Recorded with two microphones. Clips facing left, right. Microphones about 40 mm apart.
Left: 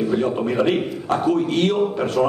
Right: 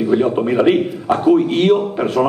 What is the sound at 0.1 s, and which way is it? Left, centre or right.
A man's voice, centre.